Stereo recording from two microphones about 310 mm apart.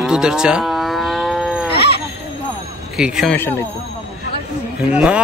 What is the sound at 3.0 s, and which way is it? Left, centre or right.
Speech, centre.